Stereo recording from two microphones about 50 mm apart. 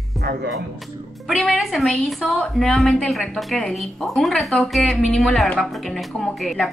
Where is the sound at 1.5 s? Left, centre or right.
Centre.